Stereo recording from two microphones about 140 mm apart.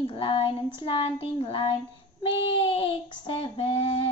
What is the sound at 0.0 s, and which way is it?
Child singing, 40° left (ahead or behind).